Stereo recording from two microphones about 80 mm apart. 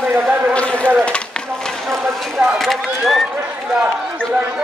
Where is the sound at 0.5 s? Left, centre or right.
Centre.